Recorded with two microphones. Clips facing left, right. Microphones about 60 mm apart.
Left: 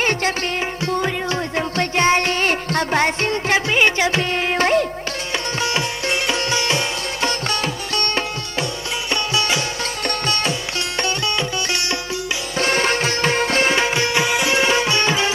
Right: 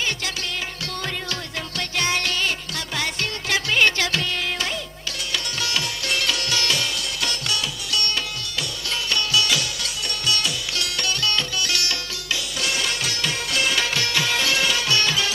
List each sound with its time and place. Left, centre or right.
0.8 s music: left
4.2 s music: left
5.6 s music: left
12.5 s music: left